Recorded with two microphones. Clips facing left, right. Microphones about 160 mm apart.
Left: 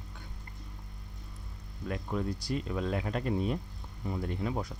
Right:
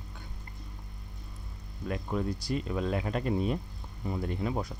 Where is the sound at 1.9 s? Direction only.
20° right (ahead or behind).